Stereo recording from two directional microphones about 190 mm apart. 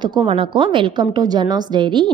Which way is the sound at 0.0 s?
25° right (ahead or behind).